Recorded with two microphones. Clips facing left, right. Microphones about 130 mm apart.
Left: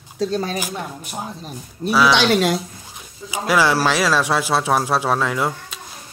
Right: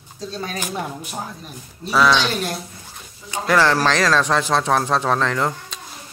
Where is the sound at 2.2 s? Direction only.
90° left.